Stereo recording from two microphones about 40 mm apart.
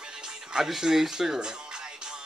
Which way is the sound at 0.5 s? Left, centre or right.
Centre.